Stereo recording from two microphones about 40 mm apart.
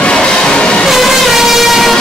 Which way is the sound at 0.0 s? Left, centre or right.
Left.